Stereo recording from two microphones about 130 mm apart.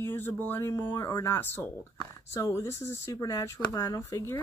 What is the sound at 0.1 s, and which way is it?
Speech, 15° left (ahead or behind).